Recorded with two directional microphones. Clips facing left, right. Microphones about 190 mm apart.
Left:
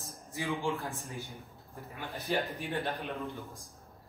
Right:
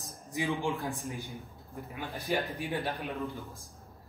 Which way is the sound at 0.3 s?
15° right (ahead or behind).